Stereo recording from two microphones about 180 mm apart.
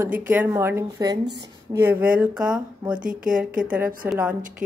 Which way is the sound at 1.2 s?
70° right (ahead or behind).